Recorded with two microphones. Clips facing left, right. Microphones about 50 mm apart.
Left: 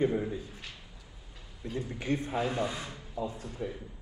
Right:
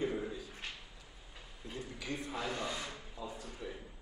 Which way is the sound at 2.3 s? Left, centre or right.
Left.